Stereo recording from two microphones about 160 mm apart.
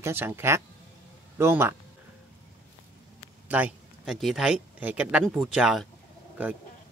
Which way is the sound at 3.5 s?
10° right (ahead or behind).